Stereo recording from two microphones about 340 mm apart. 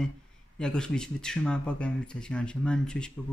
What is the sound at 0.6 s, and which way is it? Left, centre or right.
Speech, centre.